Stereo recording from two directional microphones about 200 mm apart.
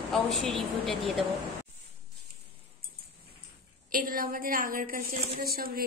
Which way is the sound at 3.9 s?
45° right (ahead or behind).